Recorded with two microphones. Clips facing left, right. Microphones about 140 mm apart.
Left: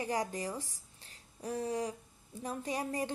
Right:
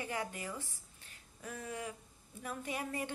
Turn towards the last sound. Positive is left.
turn(degrees=35)  # may be behind; listen again after turning